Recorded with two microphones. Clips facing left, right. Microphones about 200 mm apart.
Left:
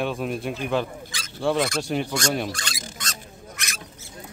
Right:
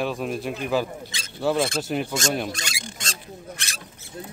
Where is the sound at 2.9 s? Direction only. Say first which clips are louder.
Right 2 dB; 30° right (ahead or behind).